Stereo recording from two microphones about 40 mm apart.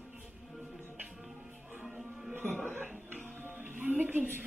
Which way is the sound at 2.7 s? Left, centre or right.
Right.